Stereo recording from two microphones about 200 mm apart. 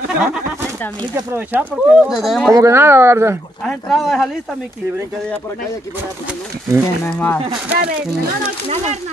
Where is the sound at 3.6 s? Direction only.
Centre (ahead or behind).